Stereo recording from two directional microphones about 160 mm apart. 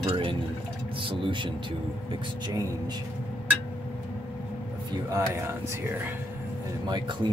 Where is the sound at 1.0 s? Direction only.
30° right (ahead or behind).